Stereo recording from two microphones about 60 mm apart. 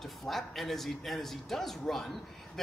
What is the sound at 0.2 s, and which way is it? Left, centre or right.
Speech, centre.